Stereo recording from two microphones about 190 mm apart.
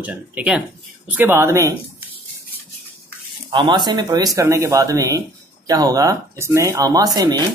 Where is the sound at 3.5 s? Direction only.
25° right (ahead or behind).